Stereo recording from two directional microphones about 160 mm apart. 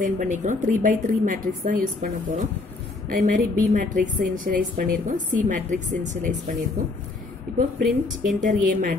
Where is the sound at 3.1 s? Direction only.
55° right (ahead or behind).